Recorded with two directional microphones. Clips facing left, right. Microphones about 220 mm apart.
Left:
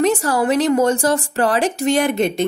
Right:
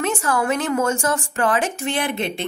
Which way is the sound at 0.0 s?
35° left (ahead or behind).